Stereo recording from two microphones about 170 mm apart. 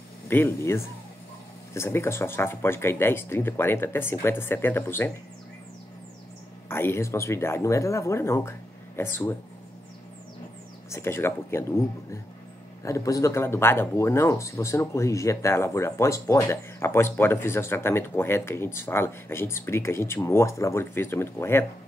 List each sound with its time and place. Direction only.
0.3 s speech: 15° left (ahead or behind)
6.7 s speech: 15° left (ahead or behind)
10.9 s speech: 15° left (ahead or behind)